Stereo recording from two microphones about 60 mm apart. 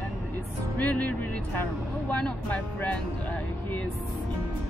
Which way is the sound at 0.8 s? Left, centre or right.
Left.